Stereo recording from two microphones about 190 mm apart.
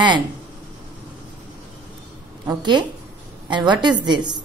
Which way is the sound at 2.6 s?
25° right (ahead or behind).